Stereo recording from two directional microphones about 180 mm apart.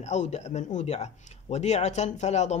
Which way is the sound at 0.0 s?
40° left (ahead or behind).